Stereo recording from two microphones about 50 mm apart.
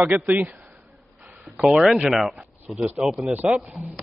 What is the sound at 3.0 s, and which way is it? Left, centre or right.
Speech, centre.